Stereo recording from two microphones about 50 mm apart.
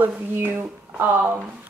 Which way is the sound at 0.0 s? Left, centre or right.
Right.